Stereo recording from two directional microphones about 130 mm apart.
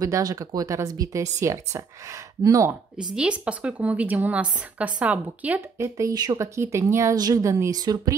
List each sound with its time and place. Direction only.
0.0 s speech: 30° right (ahead or behind)
3.2 s a woman's voice: 10° right (ahead or behind)
5.9 s speech: 30° right (ahead or behind)